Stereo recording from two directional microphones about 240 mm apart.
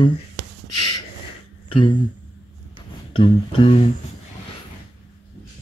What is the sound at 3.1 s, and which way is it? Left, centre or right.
Music, left.